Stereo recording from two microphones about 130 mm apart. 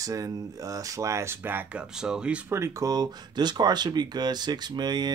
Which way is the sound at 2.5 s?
25° right (ahead or behind).